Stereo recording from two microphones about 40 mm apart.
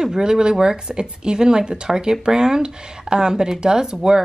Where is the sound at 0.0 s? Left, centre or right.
Centre.